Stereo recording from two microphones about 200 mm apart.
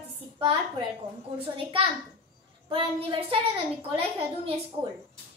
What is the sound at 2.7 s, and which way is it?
Speech, 25° right (ahead or behind).